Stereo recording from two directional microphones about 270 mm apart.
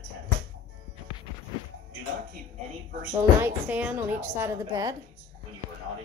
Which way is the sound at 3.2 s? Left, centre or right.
Centre.